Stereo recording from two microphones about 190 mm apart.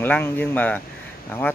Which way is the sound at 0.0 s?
10° left (ahead or behind).